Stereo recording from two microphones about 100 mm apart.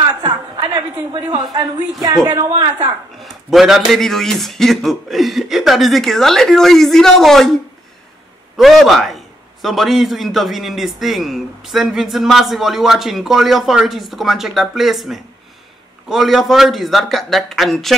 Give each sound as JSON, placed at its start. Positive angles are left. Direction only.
{"t": 0.2, "sound": "a woman's voice", "side_deg": -45}
{"t": 3.2, "sound": "a man's voice", "side_deg": 0}